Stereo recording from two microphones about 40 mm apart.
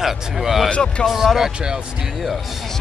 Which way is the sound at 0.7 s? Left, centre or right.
Left.